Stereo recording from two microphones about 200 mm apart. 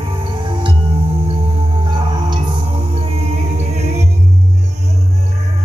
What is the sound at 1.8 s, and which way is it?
Music, 20° right (ahead or behind).